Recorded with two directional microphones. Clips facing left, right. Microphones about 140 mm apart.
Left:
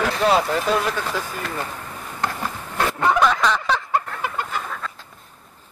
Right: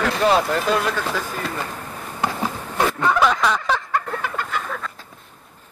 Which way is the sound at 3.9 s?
10° left (ahead or behind).